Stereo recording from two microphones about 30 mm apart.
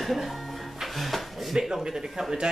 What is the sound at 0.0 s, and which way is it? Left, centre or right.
Music, centre.